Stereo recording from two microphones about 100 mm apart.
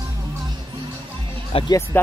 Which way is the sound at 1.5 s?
70° left (ahead or behind).